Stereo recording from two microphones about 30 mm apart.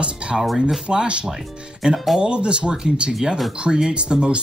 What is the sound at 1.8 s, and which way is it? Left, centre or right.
Speech, centre.